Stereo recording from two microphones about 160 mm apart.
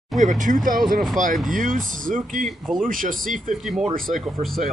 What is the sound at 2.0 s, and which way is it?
Speech, 55° right (ahead or behind).